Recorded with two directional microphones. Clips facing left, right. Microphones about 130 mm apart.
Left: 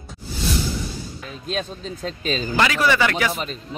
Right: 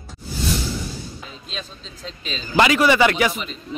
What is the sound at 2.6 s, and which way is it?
Speech, 15° right (ahead or behind).